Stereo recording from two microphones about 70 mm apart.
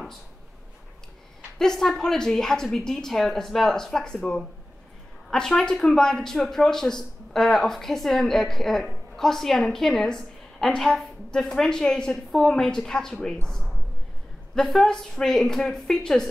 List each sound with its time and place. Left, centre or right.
1.6 s a woman's voice: centre